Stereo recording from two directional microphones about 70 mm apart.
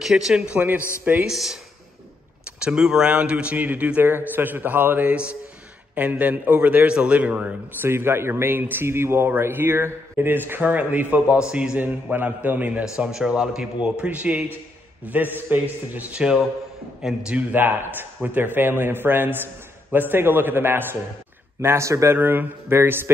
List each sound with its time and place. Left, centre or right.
0.0 s a man's voice: centre
0.6 s a man's voice: right
1.2 s speech: centre
2.6 s a man's voice: centre
7.9 s a man's voice: right
12.9 s a man's voice: centre; by 22.2 s right
22.2 s a man's voice: right